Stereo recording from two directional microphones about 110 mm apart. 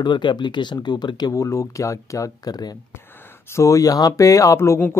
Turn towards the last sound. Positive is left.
turn(degrees=25)  # may be behind; listen again after turning